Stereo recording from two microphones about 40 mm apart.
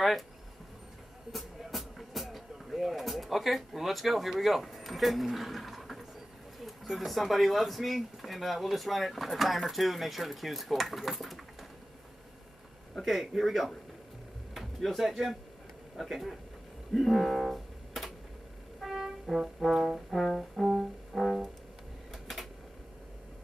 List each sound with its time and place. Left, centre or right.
1.3 s music: centre
4.6 s a sound: centre
7.1 s speech: centre
12.9 s speech: centre
16.9 s music: centre
19.6 s speech: centre
20.1 s brass instrument: centre
21.1 s music: centre
22.1 s a sound: centre